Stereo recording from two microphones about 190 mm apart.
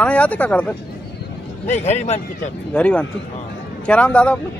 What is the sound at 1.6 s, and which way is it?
Speech, 35° left (ahead or behind).